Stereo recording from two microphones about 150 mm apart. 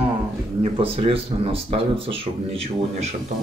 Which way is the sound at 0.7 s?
40° right (ahead or behind).